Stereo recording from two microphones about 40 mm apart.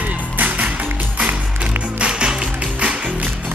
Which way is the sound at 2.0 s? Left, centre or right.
Right.